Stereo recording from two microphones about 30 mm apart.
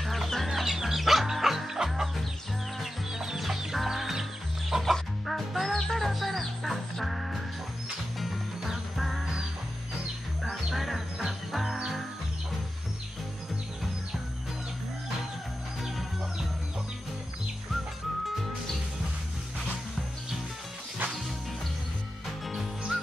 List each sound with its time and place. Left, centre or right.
0.0 s chicken: centre
0.5 s chicken: centre
0.9 s music: centre
1.7 s chicken: centre
3.2 s chicken: centre
5.2 s music: centre
10.5 s music: centre